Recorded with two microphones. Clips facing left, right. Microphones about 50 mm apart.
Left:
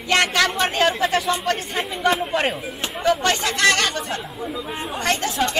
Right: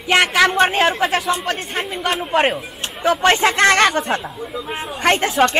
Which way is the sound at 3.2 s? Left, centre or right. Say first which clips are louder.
Right 6 dB; right.